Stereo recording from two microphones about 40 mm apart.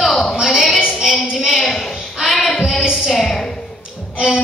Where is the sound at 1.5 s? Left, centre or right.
Centre.